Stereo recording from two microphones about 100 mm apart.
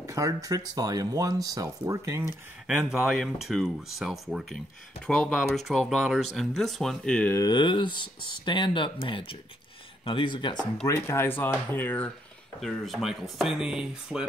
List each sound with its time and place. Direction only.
0.0 s speech: 35° right (ahead or behind)
2.6 s speech: 5° right (ahead or behind)
5.0 s speech: 10° left (ahead or behind)
7.4 s speech: 50° left (ahead or behind)
10.9 s speech: 25° left (ahead or behind)
12.5 s speech: centre (ahead or behind)